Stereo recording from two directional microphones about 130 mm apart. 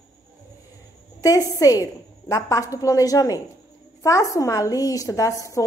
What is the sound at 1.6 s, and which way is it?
A woman's voice, 25° left (ahead or behind).